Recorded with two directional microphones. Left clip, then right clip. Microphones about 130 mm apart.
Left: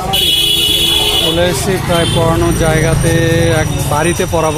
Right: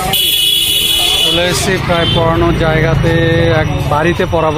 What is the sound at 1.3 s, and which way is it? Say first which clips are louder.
Speech: right 1 dB; 10° left (ahead or behind).